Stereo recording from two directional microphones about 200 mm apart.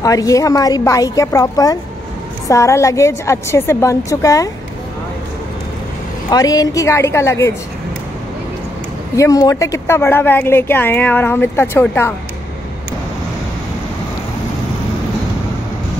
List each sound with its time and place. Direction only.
0.0 s speech: 15° left (ahead or behind)
6.3 s speech: 20° left (ahead or behind)
9.1 s speech: 15° left (ahead or behind)